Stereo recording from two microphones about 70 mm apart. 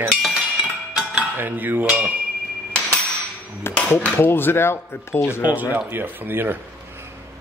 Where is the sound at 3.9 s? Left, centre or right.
Left.